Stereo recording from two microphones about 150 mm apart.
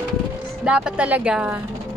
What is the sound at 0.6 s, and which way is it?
Speech, 5° right (ahead or behind).